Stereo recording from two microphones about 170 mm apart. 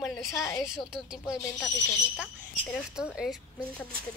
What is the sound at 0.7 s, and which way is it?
Speech, 5° right (ahead or behind).